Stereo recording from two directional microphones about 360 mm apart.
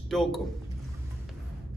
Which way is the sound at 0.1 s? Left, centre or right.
Centre.